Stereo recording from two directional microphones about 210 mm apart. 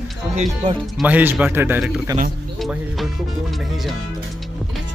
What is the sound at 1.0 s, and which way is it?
A man's voice, 10° right (ahead or behind).